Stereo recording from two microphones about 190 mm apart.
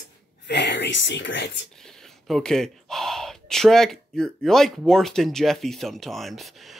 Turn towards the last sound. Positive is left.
turn(degrees=0)  # may be behind; listen again after turning